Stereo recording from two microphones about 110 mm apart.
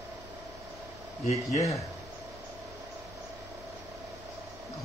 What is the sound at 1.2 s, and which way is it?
Speech, 75° left (ahead or behind).